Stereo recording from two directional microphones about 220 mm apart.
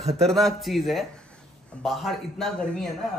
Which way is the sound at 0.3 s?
Centre (ahead or behind).